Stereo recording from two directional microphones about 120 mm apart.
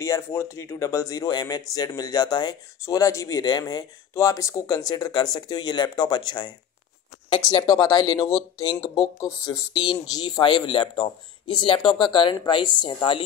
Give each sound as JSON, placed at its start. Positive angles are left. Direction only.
{"t": 0.0, "sound": "speech", "side_deg": 25}
{"t": 9.8, "sound": "speech", "side_deg": 40}